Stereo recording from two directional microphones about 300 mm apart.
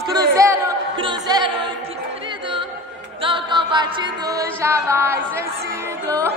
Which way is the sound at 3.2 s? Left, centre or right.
Centre.